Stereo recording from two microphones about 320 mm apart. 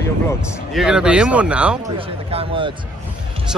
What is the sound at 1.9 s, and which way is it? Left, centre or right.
Speech, centre.